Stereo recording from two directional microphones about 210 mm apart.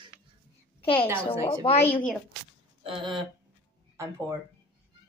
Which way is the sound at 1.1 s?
25° left (ahead or behind).